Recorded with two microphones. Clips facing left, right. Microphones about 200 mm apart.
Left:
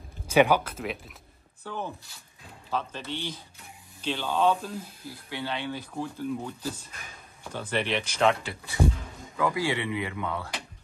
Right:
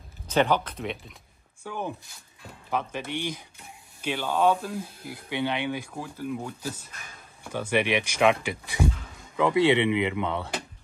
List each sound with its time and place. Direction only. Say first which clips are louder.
0.3 s speech: left 2 dB; 10° left (ahead or behind)
1.6 s speech: right 2 dB; 10° right (ahead or behind)